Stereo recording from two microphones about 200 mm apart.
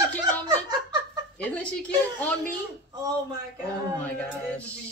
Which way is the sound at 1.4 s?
5° left (ahead or behind).